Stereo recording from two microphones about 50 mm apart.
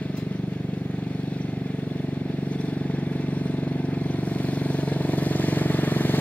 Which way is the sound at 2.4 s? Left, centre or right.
Left.